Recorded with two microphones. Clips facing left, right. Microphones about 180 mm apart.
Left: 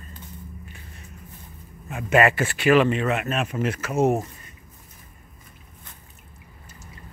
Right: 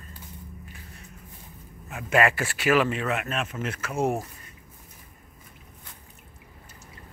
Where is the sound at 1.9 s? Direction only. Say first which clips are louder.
Left 4 dB; centre (ahead or behind).